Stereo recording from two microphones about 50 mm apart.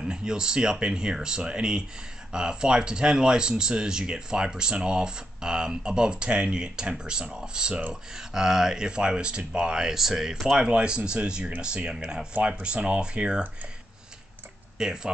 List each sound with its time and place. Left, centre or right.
0.0 s speech: centre
10.6 s speech: centre
12.4 s speech: right
14.8 s speech: centre